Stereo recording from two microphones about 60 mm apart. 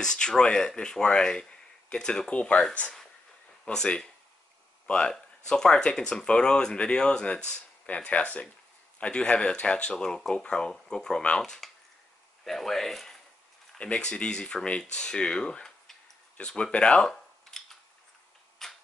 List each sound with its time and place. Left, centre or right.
0.0 s speech: centre
13.7 s speech: centre
16.3 s camera: centre